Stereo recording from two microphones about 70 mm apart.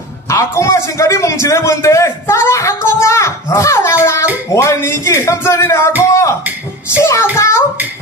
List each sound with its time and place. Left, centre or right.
0.3 s a man's voice: left
7.0 s a child's voice: left